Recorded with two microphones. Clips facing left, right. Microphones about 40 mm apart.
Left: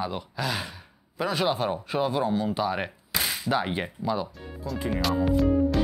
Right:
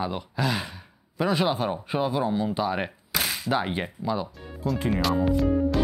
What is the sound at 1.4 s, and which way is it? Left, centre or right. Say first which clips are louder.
Speech: even; centre.